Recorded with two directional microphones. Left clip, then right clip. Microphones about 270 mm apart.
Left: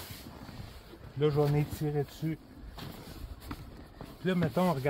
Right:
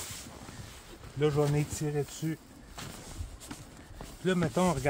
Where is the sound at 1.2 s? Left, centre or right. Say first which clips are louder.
Even; right.